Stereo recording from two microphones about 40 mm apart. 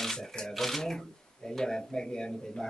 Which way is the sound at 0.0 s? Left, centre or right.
Centre.